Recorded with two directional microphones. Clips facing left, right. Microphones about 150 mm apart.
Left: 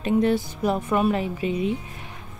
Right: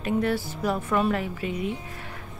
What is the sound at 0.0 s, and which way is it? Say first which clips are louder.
A woman's voice: left 4 dB; 20° left (ahead or behind).